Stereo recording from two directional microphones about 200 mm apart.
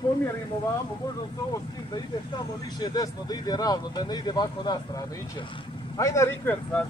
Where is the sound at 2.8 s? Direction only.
20° left (ahead or behind).